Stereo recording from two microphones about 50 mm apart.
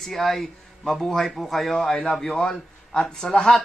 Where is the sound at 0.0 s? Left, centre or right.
Centre.